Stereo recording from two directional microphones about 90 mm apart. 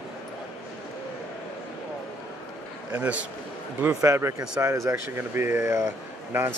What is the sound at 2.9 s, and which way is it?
Speech, 15° right (ahead or behind).